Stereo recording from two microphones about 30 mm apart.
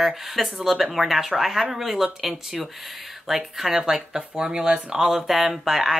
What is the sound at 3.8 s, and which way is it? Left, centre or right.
Speech, right.